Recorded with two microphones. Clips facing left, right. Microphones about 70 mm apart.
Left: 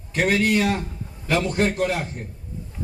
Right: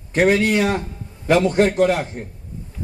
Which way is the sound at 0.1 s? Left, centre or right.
Right.